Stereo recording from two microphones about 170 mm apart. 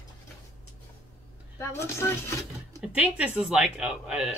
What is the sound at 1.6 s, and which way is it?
Speech, 15° left (ahead or behind).